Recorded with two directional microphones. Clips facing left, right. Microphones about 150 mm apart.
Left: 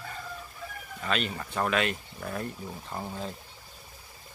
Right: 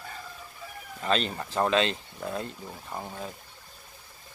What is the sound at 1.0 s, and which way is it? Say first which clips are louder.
Speech: right 3 dB; 30° right (ahead or behind).